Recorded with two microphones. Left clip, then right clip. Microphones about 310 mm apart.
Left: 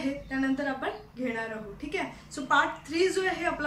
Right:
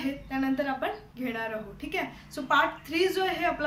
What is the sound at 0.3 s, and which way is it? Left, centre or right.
A woman's voice, centre.